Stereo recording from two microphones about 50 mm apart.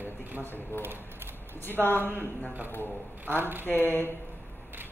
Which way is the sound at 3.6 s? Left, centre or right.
Left.